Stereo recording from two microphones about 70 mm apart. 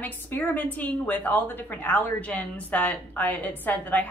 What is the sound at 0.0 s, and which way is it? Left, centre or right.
A woman's voice, left.